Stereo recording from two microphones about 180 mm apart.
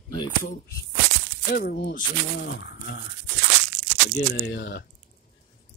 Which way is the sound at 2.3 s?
70° left (ahead or behind).